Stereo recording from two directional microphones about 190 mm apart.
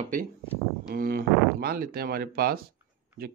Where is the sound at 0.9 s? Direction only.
50° right (ahead or behind).